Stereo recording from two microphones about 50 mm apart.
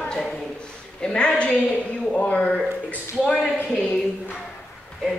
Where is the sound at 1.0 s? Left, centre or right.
Centre.